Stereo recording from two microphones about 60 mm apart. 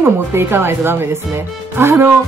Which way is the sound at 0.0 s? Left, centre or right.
Right.